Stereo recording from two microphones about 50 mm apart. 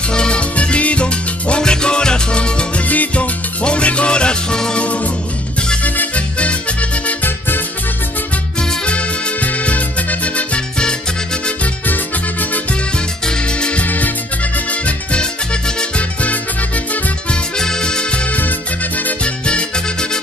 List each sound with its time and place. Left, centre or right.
0.1 s music: centre
2.9 s music: left; by 4.8 s centre
4.8 s music: left
7.2 s music: left
8.8 s music: left
11.8 s music: left
13.6 s music: left
13.8 s music: left
17.6 s music: centre
19.2 s music: centre